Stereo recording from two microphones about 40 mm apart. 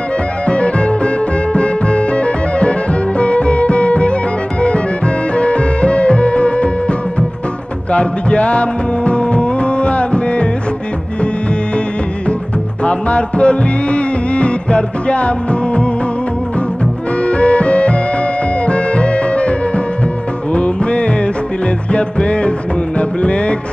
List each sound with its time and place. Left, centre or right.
0.5 s music: left
12.8 s music: left
17.2 s music: left